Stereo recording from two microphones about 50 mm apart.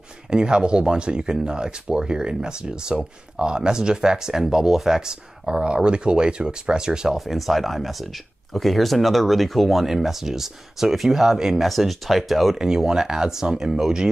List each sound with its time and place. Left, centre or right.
0.3 s speech: centre
7.2 s speech: centre
12.5 s speech: centre